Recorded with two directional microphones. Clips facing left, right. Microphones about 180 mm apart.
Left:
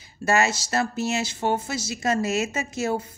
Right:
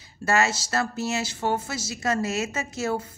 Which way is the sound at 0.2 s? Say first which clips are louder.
Left 1 dB; 15° left (ahead or behind).